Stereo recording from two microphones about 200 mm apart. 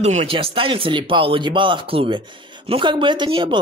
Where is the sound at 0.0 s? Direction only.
30° right (ahead or behind).